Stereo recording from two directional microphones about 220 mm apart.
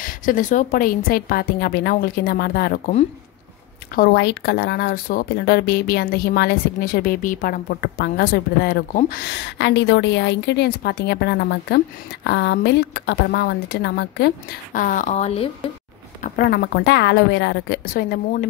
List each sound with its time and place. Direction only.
0.0 s speech: 40° left (ahead or behind)
3.9 s speech: 45° left (ahead or behind); by 15.5 s 30° left (ahead or behind)
16.2 s speech: 45° left (ahead or behind)